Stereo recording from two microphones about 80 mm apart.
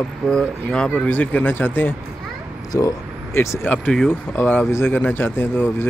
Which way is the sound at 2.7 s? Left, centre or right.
Left.